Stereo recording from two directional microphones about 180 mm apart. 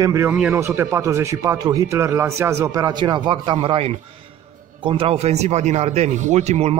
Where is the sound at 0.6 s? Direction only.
15° right (ahead or behind).